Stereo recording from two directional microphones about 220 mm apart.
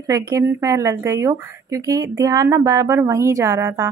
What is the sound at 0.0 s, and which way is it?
Speech, 15° right (ahead or behind).